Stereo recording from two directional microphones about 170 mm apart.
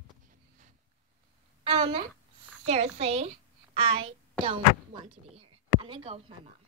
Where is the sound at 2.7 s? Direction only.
40° right (ahead or behind).